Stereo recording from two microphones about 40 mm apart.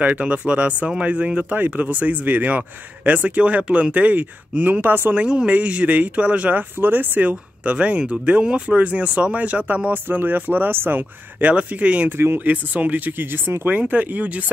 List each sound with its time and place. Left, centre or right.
0.0 s speech: right
1.5 s speech: right
4.8 s speech: right
5.1 s speech: right
6.8 s speech: right
7.2 s speech: right
10.0 s speech: right
11.5 s speech: right
13.7 s speech: right